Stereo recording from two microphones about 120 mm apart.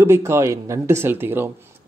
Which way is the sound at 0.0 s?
20° right (ahead or behind).